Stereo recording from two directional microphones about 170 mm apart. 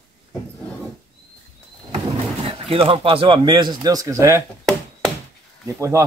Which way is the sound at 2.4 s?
35° right (ahead or behind).